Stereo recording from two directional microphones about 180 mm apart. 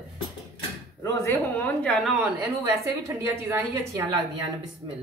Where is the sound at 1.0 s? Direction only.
15° left (ahead or behind).